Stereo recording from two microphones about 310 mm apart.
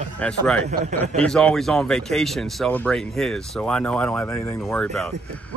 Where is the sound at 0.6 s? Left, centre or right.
Right.